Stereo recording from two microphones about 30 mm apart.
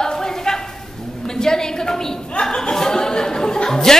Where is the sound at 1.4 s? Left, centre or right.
Left.